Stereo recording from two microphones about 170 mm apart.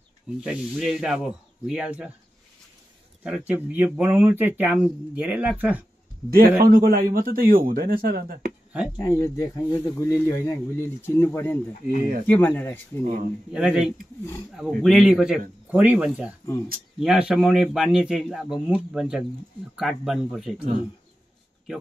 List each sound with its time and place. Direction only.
0.4 s a man's voice: 5° right (ahead or behind)
3.3 s speech: 5° right (ahead or behind)
6.3 s a man's voice: 60° right (ahead or behind)
8.9 s speech: 20° left (ahead or behind)
13.0 s speech: 45° right (ahead or behind)
13.5 s a man's voice: 5° right (ahead or behind)